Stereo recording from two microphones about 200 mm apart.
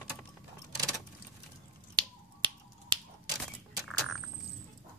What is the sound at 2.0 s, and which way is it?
Finger snapping, 25° right (ahead or behind).